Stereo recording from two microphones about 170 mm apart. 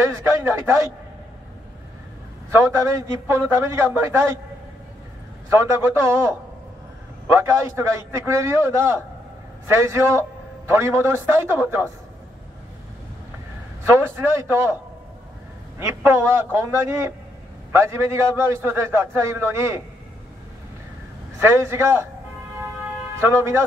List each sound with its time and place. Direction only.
0.0 s a man's voice: 15° right (ahead or behind)
2.5 s a man's voice: 15° right (ahead or behind)
5.5 s a man's voice: 15° right (ahead or behind)
13.8 s a man's voice: 15° right (ahead or behind)
16.1 s a man's voice: 15° right (ahead or behind)
21.4 s a man's voice: 15° right (ahead or behind)
23.1 s a man's voice: 15° right (ahead or behind)